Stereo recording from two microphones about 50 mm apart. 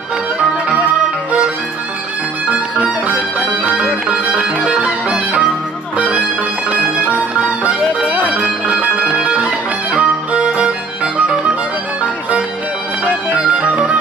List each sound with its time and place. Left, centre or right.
3.6 s music: right
12.0 s music: right